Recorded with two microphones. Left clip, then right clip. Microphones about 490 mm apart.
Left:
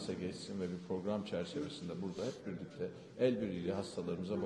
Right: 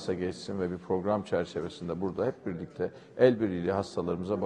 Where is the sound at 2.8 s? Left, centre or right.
Right.